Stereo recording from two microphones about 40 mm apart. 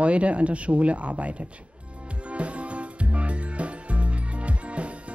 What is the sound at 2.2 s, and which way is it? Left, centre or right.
Music, right.